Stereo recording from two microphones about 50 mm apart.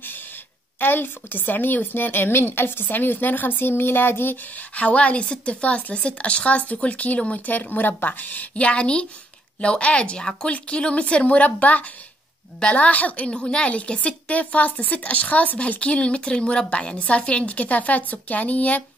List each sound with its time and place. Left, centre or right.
0.7 s a woman's voice: left
4.6 s a woman's voice: left